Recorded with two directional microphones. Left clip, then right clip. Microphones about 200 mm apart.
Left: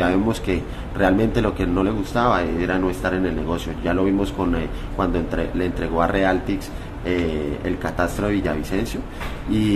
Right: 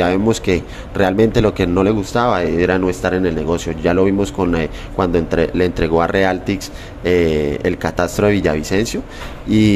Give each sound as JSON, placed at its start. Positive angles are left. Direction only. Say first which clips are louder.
{"t": 0.0, "sound": "speech", "louder": "right 5 dB", "side_deg": -35}